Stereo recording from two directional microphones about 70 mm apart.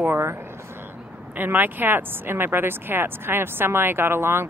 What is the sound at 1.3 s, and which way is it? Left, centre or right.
Speech, right.